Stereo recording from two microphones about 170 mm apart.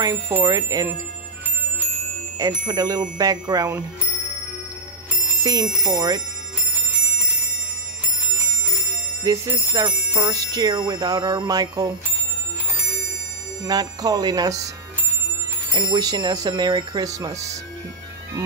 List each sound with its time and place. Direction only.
0.0 s speech: 15° right (ahead or behind)
2.3 s speech: 20° right (ahead or behind)
5.4 s speech: 20° right (ahead or behind)
9.2 s speech: 20° right (ahead or behind)
13.7 s speech: 25° right (ahead or behind)
15.7 s speech: 25° right (ahead or behind)